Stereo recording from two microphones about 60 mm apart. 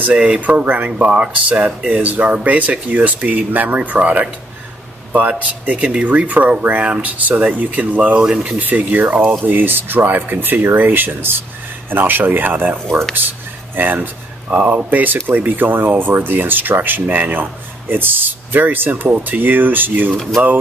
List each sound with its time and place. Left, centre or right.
0.0 s speech: right
2.0 s speech: right
5.4 s speech: right
13.7 s speech: right
20.2 s speech: centre